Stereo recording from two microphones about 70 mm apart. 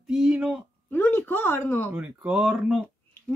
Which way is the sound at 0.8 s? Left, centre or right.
Left.